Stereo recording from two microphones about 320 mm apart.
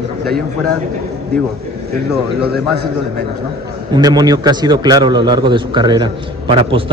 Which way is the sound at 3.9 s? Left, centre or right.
Centre.